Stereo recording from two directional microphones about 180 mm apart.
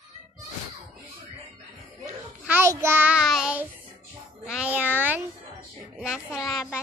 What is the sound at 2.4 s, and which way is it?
Child singing, 10° right (ahead or behind).